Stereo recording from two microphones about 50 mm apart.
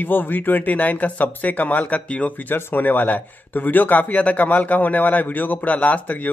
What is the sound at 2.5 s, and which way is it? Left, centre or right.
A man's voice, left.